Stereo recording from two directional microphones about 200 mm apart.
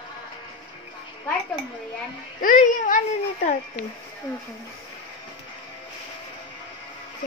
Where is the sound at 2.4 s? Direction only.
40° left (ahead or behind).